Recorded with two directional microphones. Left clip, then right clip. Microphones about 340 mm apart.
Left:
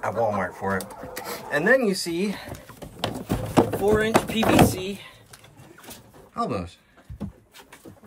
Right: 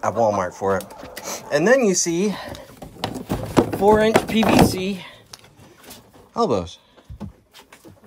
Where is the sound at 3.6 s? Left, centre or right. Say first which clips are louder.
Right 5 dB; centre.